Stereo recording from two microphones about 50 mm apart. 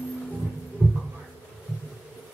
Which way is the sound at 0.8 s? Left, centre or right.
Right.